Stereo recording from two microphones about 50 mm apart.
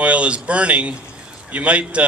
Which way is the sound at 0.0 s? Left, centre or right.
Right.